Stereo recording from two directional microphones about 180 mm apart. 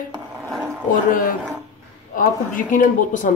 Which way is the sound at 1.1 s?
50° left (ahead or behind).